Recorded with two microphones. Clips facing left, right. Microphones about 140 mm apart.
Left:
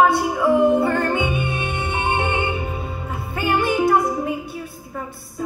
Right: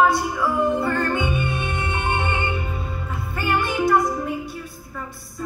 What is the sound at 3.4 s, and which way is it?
Music, 25° left (ahead or behind).